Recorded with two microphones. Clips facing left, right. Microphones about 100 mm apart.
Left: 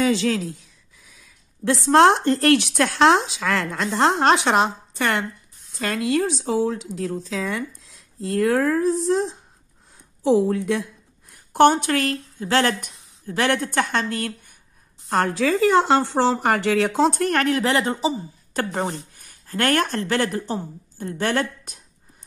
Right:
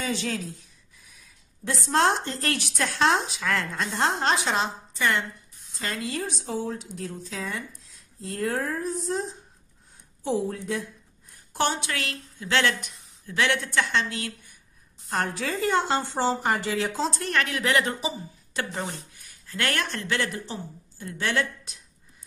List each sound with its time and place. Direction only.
0.0 s speech: 90° left
1.6 s speech: 75° left (ahead or behind)
11.5 s a woman's voice: 55° left (ahead or behind)
15.0 s speech: 90° left; by 18.1 s 30° left (ahead or behind)
18.5 s a woman's voice: 45° left (ahead or behind)